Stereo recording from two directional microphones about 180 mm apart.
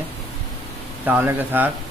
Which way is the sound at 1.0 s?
10° right (ahead or behind).